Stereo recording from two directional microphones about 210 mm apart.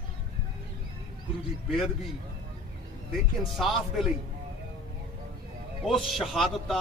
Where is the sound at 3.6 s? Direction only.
Centre (ahead or behind).